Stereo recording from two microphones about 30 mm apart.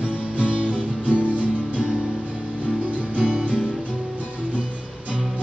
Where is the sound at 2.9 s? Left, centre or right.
Right.